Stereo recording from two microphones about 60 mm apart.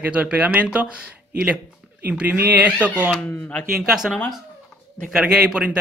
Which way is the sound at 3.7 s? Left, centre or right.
Centre.